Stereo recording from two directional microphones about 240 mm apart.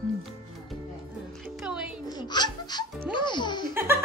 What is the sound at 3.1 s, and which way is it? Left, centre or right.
Speech, centre.